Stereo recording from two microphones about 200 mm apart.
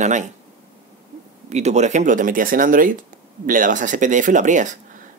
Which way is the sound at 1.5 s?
35° right (ahead or behind).